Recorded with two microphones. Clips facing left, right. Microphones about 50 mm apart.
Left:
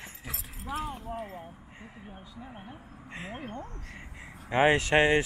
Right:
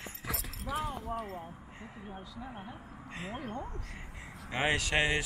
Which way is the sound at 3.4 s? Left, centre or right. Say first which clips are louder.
Even; centre.